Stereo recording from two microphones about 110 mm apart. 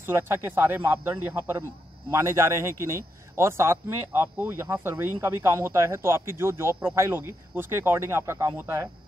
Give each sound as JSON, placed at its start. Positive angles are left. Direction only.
{"t": 0.0, "sound": "a man's voice", "side_deg": -20}